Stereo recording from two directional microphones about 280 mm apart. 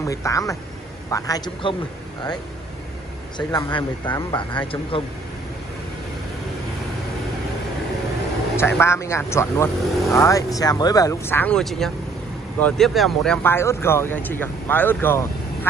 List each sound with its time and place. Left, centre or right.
0.0 s speech: centre
3.3 s speech: centre
8.5 s speech: centre